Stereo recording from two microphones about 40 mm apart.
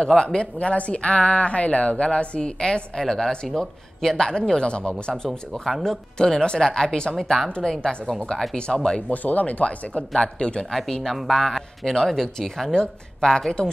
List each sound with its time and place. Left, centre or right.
0.0 s speech: centre
5.5 s speech: centre
6.1 s speech: centre
7.2 s speech: centre
7.6 s speech: centre
9.1 s speech: left
9.9 s speech: left
10.7 s speech: centre
12.7 s speech: centre